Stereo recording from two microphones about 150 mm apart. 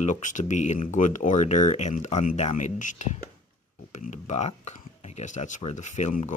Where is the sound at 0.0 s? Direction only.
55° left (ahead or behind).